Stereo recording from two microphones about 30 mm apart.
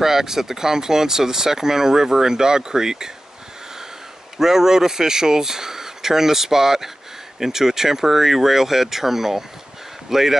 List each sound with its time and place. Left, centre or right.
0.0 s speech: centre
4.4 s speech: centre